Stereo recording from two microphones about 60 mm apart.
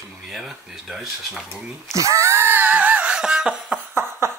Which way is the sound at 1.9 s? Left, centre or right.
Right.